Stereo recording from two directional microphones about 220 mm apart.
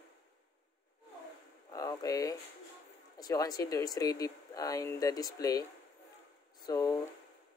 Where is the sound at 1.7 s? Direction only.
15° left (ahead or behind).